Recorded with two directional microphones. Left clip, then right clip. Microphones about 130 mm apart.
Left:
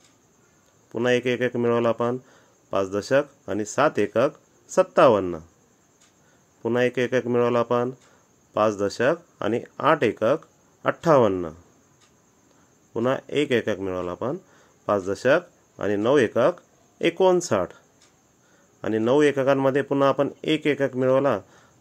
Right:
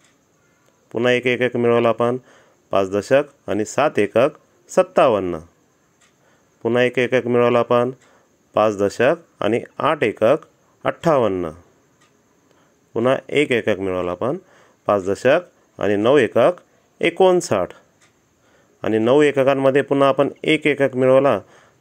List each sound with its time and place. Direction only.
0.8 s speech: 30° right (ahead or behind)
6.6 s speech: 30° right (ahead or behind)
12.9 s speech: 30° right (ahead or behind)